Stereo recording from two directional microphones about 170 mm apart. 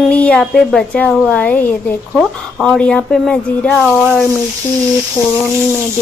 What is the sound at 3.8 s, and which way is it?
Speech, 10° right (ahead or behind).